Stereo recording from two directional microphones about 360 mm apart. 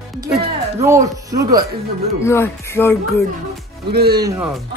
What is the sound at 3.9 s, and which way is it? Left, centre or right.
Speech, right.